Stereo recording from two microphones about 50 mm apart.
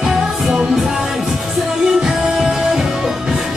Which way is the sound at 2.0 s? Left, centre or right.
Centre.